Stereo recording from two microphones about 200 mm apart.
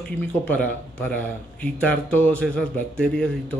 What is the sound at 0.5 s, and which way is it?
Speech, 5° left (ahead or behind).